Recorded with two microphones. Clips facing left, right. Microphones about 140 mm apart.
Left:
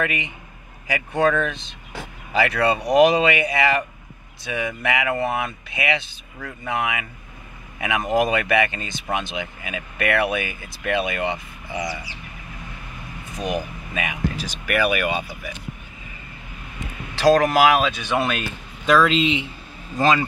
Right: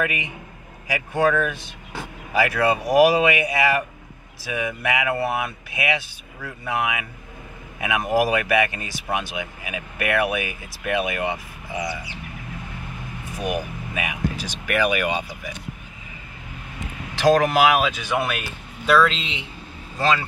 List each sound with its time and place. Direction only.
0.0 s speech: 15° right (ahead or behind)
13.4 s speech: 10° right (ahead or behind)
17.2 s speech: 15° right (ahead or behind)
18.9 s speech: centre (ahead or behind)